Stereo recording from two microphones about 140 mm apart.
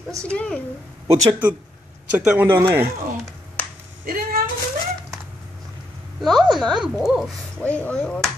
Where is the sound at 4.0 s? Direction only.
90° right.